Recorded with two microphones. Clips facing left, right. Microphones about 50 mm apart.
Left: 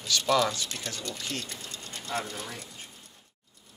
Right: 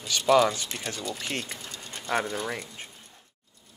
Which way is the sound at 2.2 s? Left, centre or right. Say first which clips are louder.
Right 7 dB; right.